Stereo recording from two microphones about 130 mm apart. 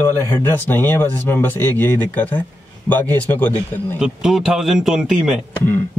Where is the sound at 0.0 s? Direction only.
15° left (ahead or behind).